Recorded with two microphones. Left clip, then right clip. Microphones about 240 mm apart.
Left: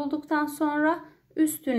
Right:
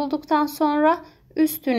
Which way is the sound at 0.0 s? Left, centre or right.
Right.